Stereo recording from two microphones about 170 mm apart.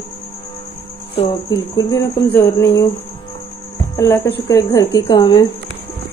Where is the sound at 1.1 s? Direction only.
25° left (ahead or behind).